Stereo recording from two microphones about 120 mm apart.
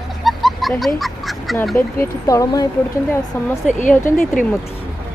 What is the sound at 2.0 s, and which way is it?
Speech, 25° left (ahead or behind).